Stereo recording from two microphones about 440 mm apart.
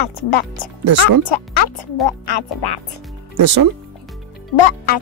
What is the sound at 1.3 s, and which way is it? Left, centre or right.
Speech, left.